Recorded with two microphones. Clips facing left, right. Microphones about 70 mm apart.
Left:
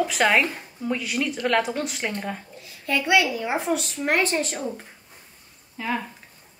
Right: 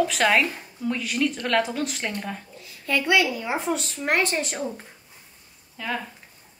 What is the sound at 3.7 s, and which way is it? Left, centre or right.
Speech, right.